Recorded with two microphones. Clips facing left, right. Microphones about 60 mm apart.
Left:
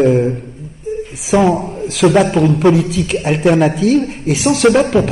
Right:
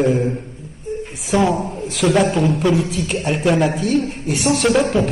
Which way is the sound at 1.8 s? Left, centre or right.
Left.